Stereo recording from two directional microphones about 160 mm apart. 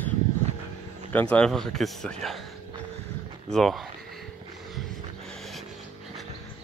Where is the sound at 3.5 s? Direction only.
Centre (ahead or behind).